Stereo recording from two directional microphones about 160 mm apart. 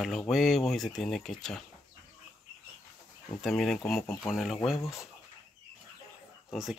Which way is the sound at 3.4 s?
Centre (ahead or behind).